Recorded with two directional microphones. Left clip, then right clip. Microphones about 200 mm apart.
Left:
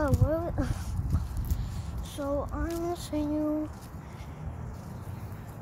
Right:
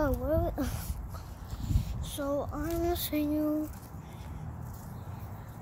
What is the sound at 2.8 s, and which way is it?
Female singing, 35° right (ahead or behind).